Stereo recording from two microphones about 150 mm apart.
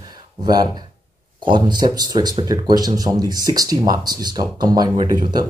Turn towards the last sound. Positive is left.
turn(degrees=-30)  # may be behind; listen again after turning